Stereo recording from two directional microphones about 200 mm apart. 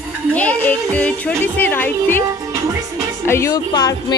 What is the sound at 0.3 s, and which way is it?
Speech, 10° left (ahead or behind).